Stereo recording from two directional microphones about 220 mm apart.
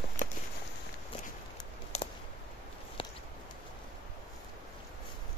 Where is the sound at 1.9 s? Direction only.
30° left (ahead or behind).